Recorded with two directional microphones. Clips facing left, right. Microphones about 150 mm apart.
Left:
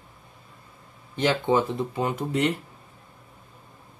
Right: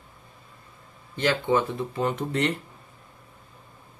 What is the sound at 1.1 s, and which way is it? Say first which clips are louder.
Speech: left 1 dB; 20° left (ahead or behind).